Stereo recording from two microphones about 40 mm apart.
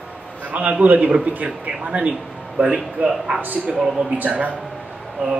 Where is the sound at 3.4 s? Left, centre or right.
Right.